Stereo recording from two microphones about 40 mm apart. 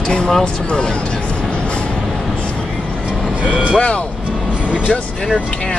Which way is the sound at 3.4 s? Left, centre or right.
Right.